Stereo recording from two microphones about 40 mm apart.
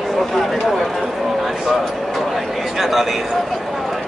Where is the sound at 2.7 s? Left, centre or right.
Centre.